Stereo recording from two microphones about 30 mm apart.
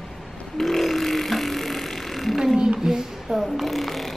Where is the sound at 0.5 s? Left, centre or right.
Centre.